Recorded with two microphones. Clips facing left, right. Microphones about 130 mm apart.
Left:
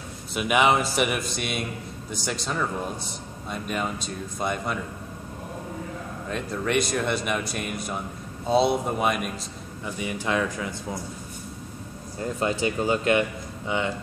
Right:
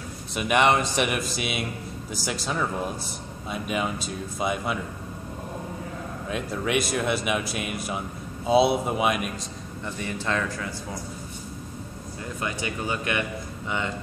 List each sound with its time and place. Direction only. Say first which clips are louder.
0.3 s speech: even; centre (ahead or behind)
6.2 s speech: even; 5° right (ahead or behind)
9.8 s speech: left 1 dB; 10° left (ahead or behind)
12.4 s speech: left 6 dB; 30° left (ahead or behind)